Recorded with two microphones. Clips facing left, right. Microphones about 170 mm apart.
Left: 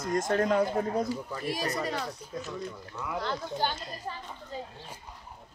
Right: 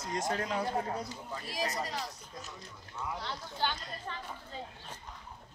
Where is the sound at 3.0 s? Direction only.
90° left.